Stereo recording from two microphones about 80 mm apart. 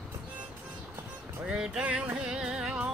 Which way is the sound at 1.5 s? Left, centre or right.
Centre.